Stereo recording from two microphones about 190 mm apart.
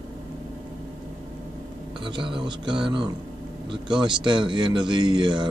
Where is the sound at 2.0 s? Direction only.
25° right (ahead or behind).